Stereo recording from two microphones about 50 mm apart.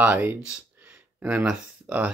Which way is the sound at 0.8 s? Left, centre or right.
Right.